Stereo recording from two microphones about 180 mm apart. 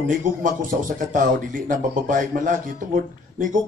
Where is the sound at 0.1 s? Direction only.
45° right (ahead or behind).